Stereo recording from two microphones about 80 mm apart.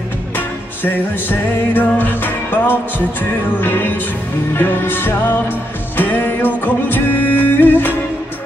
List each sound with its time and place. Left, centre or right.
0.9 s music: left